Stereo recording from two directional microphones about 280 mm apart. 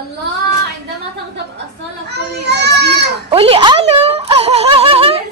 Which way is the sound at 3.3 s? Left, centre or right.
Centre.